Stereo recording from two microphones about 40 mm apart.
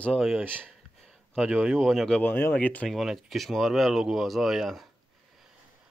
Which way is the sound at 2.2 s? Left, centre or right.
Left.